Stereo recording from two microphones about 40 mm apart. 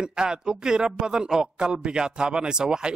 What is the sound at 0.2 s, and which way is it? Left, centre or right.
A man's voice, centre.